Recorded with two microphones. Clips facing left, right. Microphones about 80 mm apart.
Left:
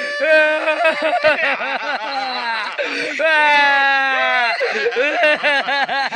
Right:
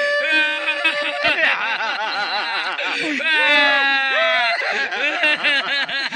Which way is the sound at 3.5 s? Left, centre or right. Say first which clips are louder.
Left 3 dB; centre.